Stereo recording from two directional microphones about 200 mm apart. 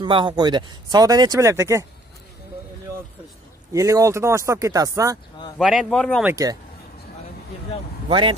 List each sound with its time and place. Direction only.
0.0 s speech: 25° right (ahead or behind)
3.7 s speech: 15° right (ahead or behind)
5.6 s speech: centre (ahead or behind)
6.2 s speech: 15° right (ahead or behind)
8.1 s speech: 25° right (ahead or behind)